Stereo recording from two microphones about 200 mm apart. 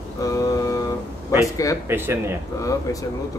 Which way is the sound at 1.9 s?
10° right (ahead or behind).